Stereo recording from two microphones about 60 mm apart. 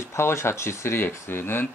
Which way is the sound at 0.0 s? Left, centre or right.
Left.